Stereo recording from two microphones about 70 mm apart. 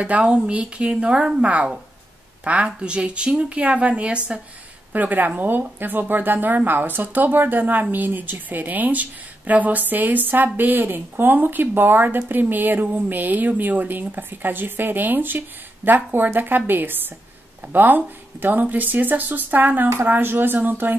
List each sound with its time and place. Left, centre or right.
0.0 s speech: centre